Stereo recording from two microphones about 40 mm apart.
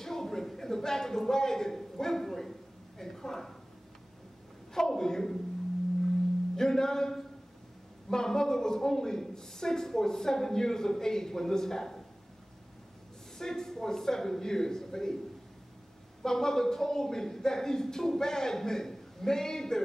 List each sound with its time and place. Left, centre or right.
0.0 s a man's voice: centre
4.7 s a woman's voice: centre
6.5 s music: centre
8.1 s a man's voice: centre
13.4 s a man's voice: centre
16.2 s a man's voice: centre